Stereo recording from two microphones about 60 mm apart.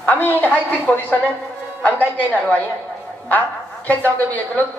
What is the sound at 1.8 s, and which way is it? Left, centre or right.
Speech, left.